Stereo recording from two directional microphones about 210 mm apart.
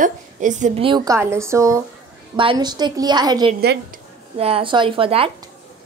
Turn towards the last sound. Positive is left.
turn(degrees=-25)  # may be behind; listen again after turning